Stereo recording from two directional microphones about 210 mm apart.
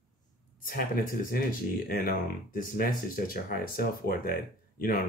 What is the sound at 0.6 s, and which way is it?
Speech, 45° left (ahead or behind).